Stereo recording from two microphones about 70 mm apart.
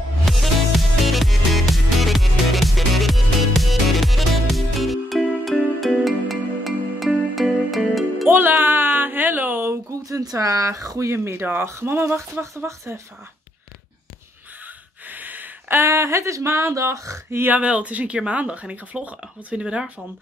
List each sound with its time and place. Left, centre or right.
0.2 s music: centre
8.3 s a sound: right
9.8 s speech: right
15.0 s gasp: right
15.8 s a sound: right
17.5 s speech: centre